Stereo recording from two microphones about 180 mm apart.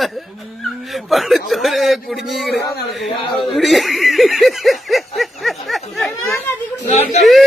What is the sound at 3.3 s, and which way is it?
Snicker, centre (ahead or behind).